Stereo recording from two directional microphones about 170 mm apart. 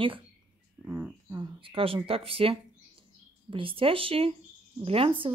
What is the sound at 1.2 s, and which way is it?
Speech, 25° right (ahead or behind).